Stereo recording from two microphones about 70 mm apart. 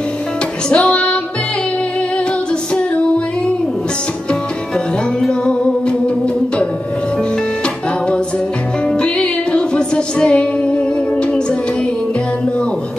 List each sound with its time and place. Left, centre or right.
0.7 s music: centre
2.7 s female singing: centre
5.2 s music: centre
8.8 s music: centre